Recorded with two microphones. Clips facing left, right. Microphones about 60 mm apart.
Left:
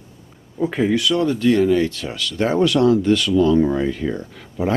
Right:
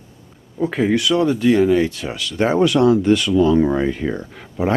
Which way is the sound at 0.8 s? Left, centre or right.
Centre.